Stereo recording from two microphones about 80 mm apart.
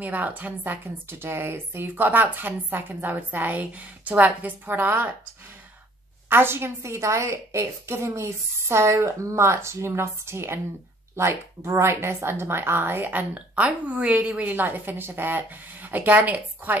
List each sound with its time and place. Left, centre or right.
0.0 s a woman's voice: centre
1.2 s a woman's voice: right
6.2 s a woman's voice: right; by 14.5 s centre
14.5 s a woman's voice: right